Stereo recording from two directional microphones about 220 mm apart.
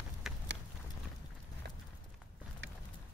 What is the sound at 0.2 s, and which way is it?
Clip-clop, centre (ahead or behind).